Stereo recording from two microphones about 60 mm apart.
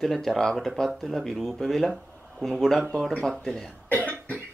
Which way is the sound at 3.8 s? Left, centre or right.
Right.